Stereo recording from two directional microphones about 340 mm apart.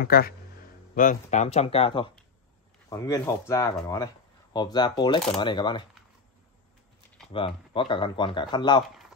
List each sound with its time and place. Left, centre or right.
0.0 s speech: left
7.3 s speech: centre